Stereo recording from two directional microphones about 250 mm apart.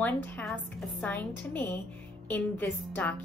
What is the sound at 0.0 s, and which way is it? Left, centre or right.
A woman's voice, centre.